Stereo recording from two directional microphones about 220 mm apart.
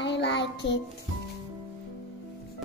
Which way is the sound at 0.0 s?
50° left (ahead or behind).